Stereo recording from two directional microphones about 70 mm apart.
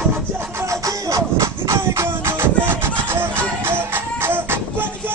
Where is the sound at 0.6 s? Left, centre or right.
Right.